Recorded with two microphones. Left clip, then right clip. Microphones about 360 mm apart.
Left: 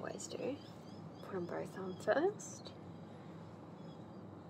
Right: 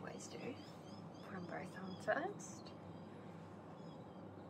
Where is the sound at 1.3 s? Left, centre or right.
Centre.